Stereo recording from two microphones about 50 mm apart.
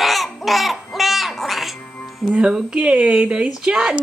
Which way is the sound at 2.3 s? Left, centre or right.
Right.